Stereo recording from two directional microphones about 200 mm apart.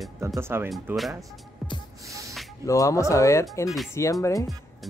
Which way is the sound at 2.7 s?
15° left (ahead or behind).